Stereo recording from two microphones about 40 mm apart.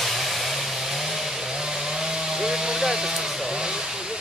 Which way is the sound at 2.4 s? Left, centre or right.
Centre.